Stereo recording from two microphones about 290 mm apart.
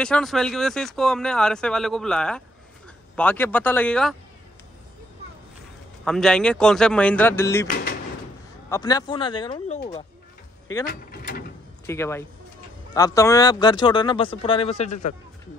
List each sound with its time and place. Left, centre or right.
0.0 s speech: centre
6.0 s speech: centre
8.6 s speech: centre
10.9 s speech: left
11.8 s speech: centre; by 15.1 s left